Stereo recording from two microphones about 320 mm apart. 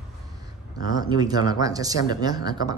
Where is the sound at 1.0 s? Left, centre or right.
Centre.